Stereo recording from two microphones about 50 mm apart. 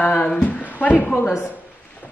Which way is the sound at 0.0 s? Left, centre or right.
Left.